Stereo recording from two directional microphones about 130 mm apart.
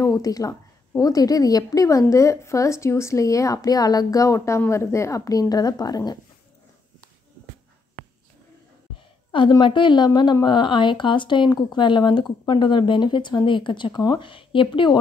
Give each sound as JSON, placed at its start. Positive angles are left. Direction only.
{"t": 0.0, "sound": "a woman's voice", "side_deg": 25}
{"t": 9.3, "sound": "a woman's voice", "side_deg": 40}